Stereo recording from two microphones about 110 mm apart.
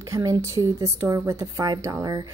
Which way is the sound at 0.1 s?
30° right (ahead or behind).